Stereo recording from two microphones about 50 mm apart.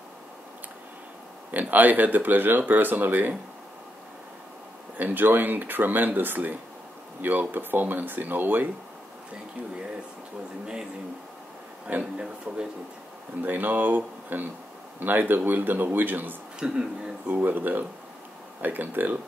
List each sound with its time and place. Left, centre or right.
1.5 s speech: right
4.9 s speech: right
12.0 s speech: centre
13.4 s speech: right
16.5 s speech: centre
17.3 s speech: right